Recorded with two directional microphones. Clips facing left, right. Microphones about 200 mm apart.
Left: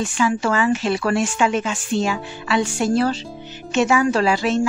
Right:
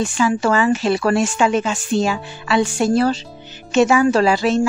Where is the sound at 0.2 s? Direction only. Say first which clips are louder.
Right 2 dB; 35° right (ahead or behind).